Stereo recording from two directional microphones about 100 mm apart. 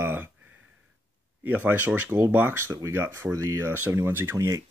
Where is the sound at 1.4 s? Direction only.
20° right (ahead or behind).